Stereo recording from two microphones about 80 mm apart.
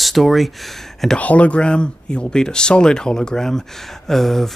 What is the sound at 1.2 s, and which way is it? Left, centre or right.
Speech, centre.